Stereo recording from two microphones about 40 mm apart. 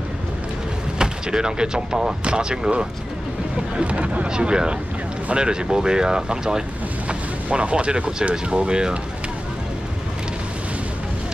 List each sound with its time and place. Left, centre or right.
0.9 s speech: centre
3.8 s speech: right
4.3 s speech: right
7.1 s speech: right